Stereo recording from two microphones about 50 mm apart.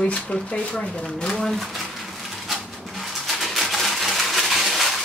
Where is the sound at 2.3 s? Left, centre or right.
Centre.